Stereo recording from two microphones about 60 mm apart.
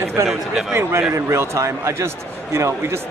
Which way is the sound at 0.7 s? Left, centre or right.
Right.